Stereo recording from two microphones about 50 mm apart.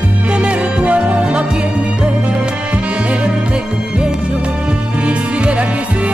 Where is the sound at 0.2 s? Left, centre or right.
Right.